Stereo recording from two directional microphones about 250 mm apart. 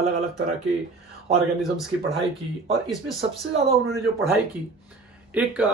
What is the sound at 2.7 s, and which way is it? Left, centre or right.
Speech, centre.